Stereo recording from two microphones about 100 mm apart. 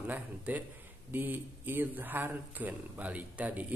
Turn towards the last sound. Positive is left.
turn(degrees=-15)  # may be behind; listen again after turning